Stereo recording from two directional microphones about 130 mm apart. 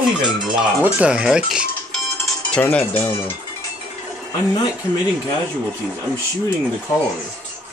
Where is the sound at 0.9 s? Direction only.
10° right (ahead or behind).